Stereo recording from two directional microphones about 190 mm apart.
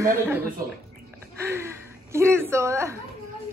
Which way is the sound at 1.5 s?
15° right (ahead or behind).